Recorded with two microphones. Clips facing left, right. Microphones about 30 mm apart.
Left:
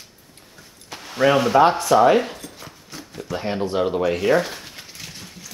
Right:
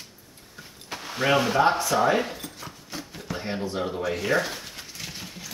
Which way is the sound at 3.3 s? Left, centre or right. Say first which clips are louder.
Left 6 dB; left.